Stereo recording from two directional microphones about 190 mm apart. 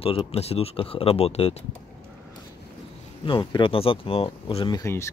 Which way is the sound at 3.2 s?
25° left (ahead or behind).